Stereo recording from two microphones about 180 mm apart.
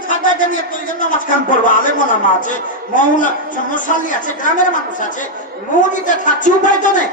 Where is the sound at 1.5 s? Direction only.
45° left (ahead or behind).